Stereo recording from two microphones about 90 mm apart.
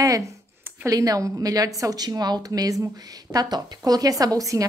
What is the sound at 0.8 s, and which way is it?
A woman's voice, 40° right (ahead or behind).